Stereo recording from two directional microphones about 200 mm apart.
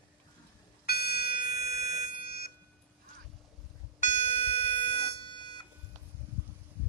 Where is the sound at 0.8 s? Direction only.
50° left (ahead or behind).